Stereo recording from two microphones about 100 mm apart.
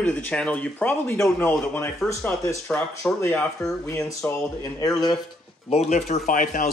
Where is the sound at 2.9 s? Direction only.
30° left (ahead or behind).